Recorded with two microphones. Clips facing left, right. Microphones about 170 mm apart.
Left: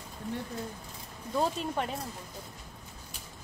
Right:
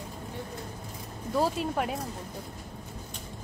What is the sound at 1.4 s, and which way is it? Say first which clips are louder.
Speech: right 2 dB; 5° right (ahead or behind).